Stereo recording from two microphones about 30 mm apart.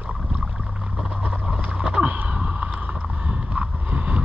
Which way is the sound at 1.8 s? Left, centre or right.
Right.